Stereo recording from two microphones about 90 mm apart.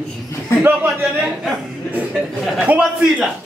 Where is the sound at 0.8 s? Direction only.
5° right (ahead or behind).